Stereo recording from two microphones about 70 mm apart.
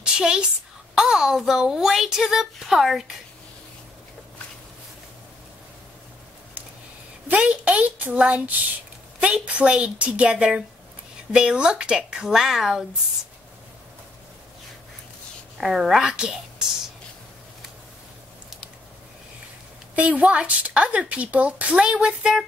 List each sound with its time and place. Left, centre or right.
0.0 s a sound: centre
0.9 s speech: centre
7.2 s a woman's voice: centre
15.5 s speech: centre
20.0 s speech: centre